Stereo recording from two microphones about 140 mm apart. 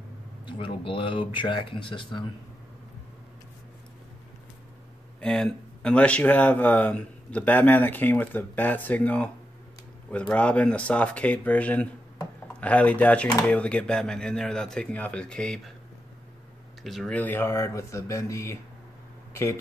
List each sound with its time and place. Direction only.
0.5 s speech: 40° left (ahead or behind)
5.2 s speech: 5° left (ahead or behind)
10.3 s speech: 10° left (ahead or behind)
16.8 s speech: centre (ahead or behind)
17.2 s speech: 15° left (ahead or behind)